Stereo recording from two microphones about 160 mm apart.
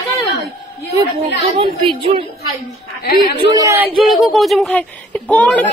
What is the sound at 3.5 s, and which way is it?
Speech, 15° right (ahead or behind).